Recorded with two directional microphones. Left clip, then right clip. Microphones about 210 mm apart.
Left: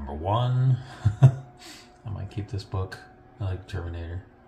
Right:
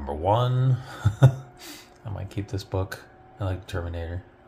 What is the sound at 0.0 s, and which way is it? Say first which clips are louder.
Speech: right 4 dB; 35° right (ahead or behind).